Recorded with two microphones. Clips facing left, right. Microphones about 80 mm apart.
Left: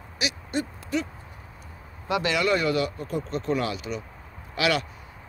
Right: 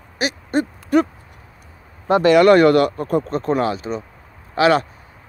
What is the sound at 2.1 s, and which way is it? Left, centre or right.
Speech, right.